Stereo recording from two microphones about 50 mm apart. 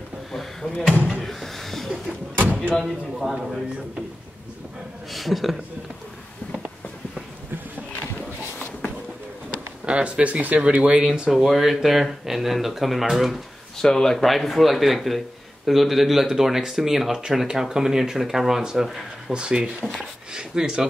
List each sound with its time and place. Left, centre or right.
0.3 s drawer open or close: centre
1.2 s a sound: centre
2.8 s speech: centre
5.1 s speech: centre
9.8 s a man's voice: right
11.3 s speech: centre
13.7 s a man's voice: centre